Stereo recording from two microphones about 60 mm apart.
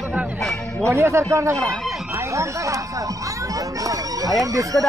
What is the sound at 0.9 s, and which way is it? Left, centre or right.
Speech, right.